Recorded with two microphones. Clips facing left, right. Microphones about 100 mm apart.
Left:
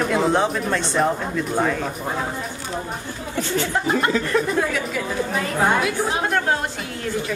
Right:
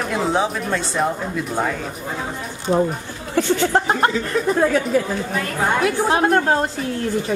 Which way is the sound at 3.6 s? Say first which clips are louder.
Right 3 dB; 45° right (ahead or behind).